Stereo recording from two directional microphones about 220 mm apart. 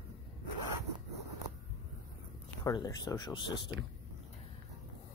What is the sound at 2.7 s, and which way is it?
Speech, 15° left (ahead or behind).